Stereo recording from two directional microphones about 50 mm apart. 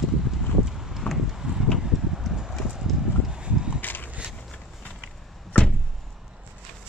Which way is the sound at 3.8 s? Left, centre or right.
Left.